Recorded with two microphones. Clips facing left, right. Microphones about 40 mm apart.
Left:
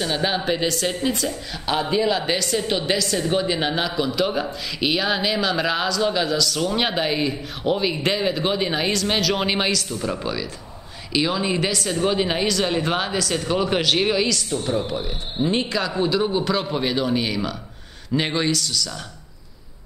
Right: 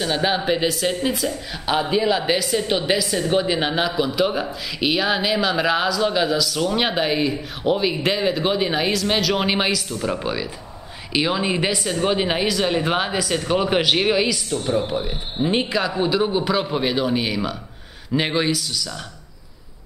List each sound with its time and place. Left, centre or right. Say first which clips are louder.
0.0 s speech: right 2 dB; centre